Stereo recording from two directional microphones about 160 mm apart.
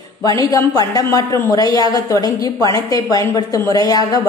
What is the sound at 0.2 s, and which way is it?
A woman's voice, 20° left (ahead or behind).